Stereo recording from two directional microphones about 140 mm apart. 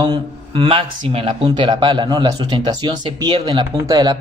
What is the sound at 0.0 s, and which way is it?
Speech, 35° right (ahead or behind).